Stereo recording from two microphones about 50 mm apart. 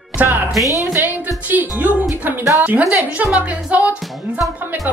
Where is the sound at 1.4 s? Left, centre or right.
Right.